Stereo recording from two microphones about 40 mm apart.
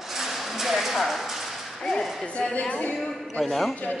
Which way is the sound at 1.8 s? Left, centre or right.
Centre.